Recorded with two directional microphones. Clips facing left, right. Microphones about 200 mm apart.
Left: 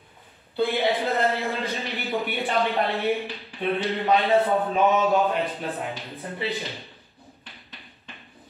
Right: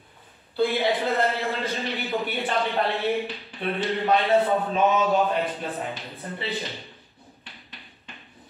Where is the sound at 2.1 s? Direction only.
15° left (ahead or behind).